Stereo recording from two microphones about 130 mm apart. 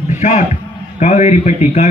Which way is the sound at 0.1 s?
65° left (ahead or behind).